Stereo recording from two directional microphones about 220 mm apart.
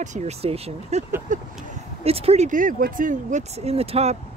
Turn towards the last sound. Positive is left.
turn(degrees=-30)  # may be behind; listen again after turning